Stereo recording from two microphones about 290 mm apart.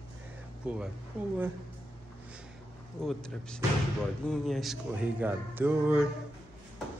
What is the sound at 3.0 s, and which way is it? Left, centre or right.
Speech, centre.